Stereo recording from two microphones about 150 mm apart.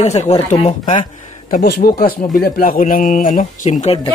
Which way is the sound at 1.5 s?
85° left.